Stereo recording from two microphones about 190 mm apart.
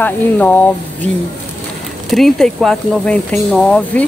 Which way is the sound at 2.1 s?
Centre (ahead or behind).